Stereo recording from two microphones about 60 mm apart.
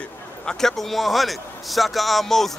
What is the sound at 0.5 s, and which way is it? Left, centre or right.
A man's voice, centre.